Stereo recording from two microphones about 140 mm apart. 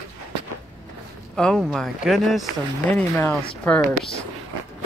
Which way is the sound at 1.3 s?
5° left (ahead or behind).